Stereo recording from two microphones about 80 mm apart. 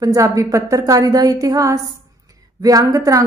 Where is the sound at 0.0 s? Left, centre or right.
Right.